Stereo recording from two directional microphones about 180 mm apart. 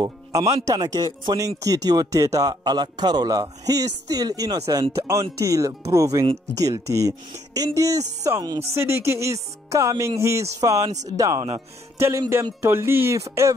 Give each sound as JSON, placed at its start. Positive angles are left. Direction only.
{"t": 0.0, "sound": "a man's voice", "side_deg": -20}
{"t": 12.0, "sound": "speech", "side_deg": -15}